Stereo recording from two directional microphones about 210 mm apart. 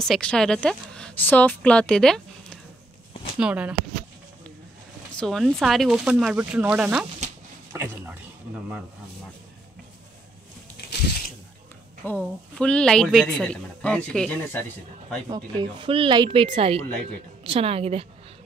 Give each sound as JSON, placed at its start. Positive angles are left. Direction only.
{"t": 0.0, "sound": "a woman's voice", "side_deg": 5}
{"t": 5.1, "sound": "speech", "side_deg": 0}
{"t": 7.7, "sound": "a sound", "side_deg": -10}
{"t": 12.0, "sound": "speech", "side_deg": 5}
{"t": 15.2, "sound": "speech", "side_deg": -20}